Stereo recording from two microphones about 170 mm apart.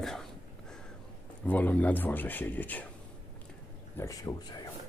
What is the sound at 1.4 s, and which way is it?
Speech, 10° left (ahead or behind).